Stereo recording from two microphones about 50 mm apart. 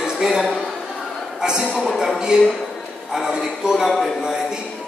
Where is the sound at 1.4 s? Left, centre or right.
Centre.